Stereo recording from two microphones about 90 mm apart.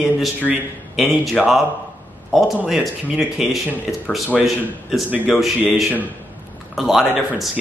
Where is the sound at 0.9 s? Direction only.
Centre (ahead or behind).